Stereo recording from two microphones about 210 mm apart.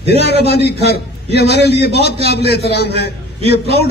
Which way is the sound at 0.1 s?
50° left (ahead or behind).